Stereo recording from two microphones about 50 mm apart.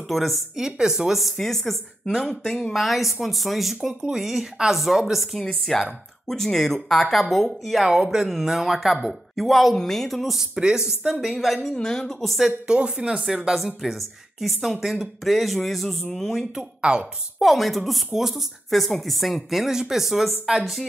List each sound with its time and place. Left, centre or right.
0.1 s speech: centre
0.6 s speech: centre
11.7 s speech: centre
12.2 s speech: centre
12.4 s speech: centre
13.2 s speech: centre
16.9 s speech: centre
17.4 s speech: centre